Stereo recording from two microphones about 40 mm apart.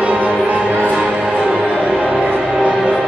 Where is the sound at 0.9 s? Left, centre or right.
Centre.